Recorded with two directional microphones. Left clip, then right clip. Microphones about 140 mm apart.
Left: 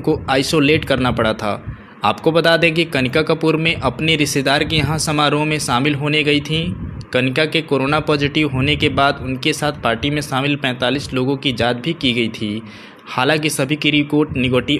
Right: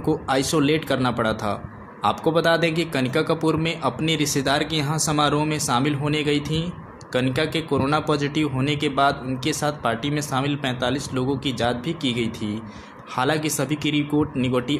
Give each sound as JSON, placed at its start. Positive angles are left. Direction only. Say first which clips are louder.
{"t": 0.0, "sound": "a man's voice", "louder": "left 5 dB", "side_deg": 10}